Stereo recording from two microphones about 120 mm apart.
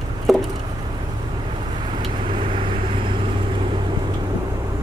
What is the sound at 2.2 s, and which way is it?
Vehicle, 45° right (ahead or behind).